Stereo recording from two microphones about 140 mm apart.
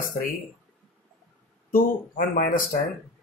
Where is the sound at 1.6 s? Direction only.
85° left.